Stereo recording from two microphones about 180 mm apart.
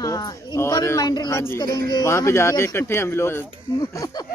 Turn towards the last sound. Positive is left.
turn(degrees=15)  # may be behind; listen again after turning